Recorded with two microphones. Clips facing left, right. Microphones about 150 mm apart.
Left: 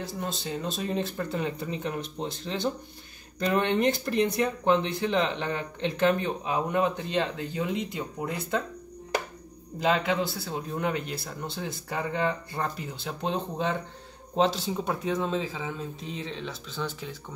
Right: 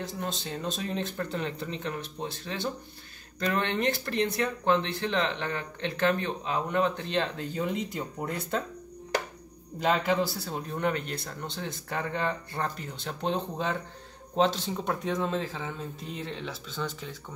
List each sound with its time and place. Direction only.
0.0 s speech: 5° left (ahead or behind)
9.8 s speech: centre (ahead or behind)